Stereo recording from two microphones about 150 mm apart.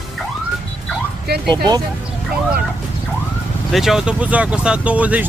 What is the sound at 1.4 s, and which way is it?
Speech, 30° right (ahead or behind).